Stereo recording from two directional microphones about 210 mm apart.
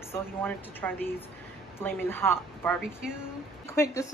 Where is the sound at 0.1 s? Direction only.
10° left (ahead or behind).